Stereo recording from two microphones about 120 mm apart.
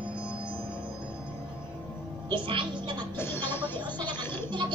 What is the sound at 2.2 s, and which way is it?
Speech, 45° right (ahead or behind).